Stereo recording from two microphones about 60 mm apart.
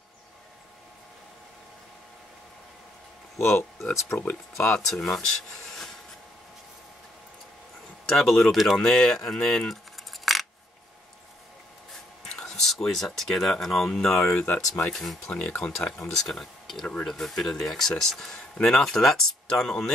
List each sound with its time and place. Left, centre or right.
3.3 s speech: left
4.1 s speech: left
4.7 s speech: centre
8.1 s speech: centre
12.4 s speech: centre
14.3 s speech: left
14.8 s speech: centre